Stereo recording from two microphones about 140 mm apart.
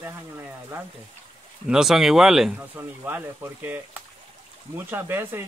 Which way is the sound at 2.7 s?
15° right (ahead or behind).